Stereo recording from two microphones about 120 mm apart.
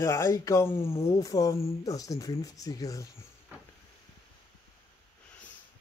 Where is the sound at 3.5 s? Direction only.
15° right (ahead or behind).